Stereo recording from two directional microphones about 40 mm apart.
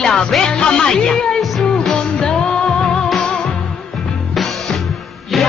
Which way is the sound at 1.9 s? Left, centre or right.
Left.